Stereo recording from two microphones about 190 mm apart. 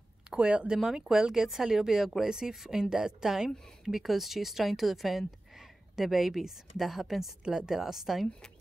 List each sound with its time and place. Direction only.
0.3 s speech: 5° right (ahead or behind)